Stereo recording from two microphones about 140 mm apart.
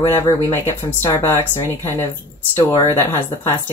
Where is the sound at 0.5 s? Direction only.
15° left (ahead or behind).